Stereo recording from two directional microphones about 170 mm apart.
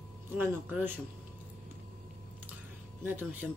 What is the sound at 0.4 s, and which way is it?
Speech, 10° right (ahead or behind).